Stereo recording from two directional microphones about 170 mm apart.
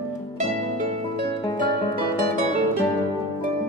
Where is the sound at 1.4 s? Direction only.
30° left (ahead or behind).